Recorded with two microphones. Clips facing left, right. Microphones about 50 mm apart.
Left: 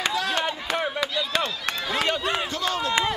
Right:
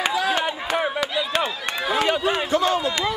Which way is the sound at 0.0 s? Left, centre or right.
Centre.